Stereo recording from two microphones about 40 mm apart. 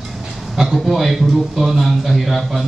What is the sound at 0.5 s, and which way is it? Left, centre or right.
A man's voice, centre.